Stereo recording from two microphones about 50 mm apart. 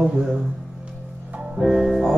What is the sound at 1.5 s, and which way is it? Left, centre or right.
Music, centre.